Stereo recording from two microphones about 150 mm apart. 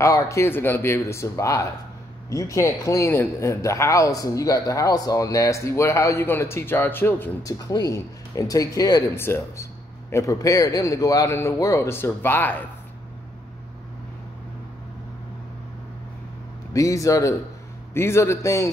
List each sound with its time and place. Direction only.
0.0 s speech: 20° left (ahead or behind)
16.7 s speech: 20° left (ahead or behind)